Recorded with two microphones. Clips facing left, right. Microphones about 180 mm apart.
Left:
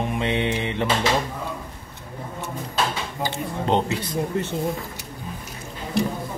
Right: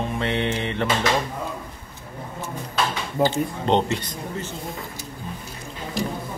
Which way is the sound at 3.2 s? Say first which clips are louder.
Right 8 dB; 5° left (ahead or behind).